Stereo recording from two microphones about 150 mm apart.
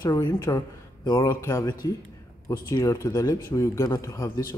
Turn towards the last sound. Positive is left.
turn(degrees=20)  # may be behind; listen again after turning